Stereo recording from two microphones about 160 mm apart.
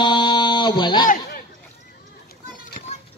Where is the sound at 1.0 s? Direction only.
60° left (ahead or behind).